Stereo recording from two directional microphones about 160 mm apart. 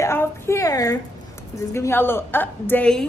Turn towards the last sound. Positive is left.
turn(degrees=5)  # may be behind; listen again after turning